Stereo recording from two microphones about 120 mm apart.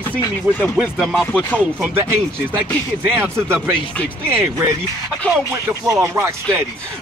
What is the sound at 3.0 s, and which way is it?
Speech, 15° right (ahead or behind).